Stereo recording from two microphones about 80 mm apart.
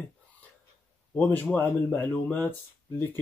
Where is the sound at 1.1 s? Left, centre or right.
Centre.